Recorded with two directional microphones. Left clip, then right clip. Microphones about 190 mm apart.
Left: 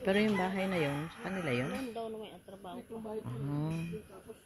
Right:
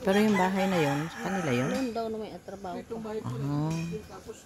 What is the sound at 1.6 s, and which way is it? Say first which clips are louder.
Speech: right 8 dB; 55° right (ahead or behind).